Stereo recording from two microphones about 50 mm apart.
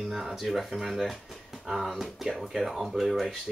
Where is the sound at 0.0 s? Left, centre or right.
Centre.